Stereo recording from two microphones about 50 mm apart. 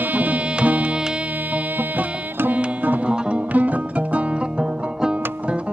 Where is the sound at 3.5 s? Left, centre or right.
Right.